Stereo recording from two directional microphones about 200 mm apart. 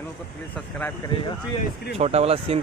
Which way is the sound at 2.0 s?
30° right (ahead or behind).